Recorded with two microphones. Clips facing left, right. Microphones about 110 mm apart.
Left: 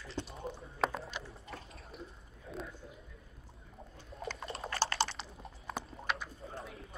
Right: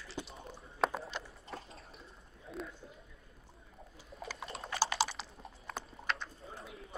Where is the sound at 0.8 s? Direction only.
Centre (ahead or behind).